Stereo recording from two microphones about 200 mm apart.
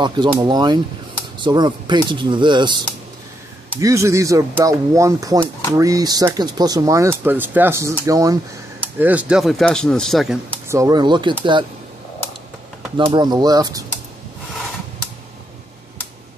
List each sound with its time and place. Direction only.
0.0 s speech: 25° right (ahead or behind)
9.0 s speech: 5° right (ahead or behind)
10.7 s speech: 15° right (ahead or behind)
12.9 s speech: 20° right (ahead or behind)